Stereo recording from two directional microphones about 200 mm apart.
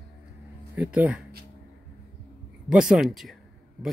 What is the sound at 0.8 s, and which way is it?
Speech, 5° right (ahead or behind).